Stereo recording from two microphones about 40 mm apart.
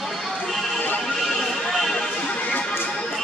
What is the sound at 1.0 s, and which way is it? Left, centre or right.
Music, centre.